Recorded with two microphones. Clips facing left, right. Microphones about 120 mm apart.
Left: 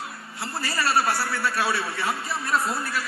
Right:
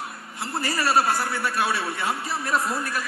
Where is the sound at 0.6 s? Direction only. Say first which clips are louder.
Right 2 dB; 20° right (ahead or behind).